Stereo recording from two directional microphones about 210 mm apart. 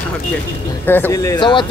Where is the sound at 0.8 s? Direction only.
10° left (ahead or behind).